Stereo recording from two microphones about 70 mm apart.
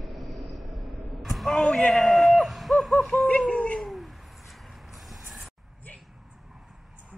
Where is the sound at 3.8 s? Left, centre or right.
Centre.